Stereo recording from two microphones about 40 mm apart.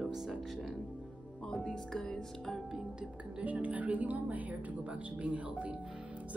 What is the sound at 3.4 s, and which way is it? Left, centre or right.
A woman's voice, right.